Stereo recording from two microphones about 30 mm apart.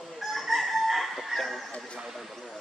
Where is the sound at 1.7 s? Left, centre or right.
Left.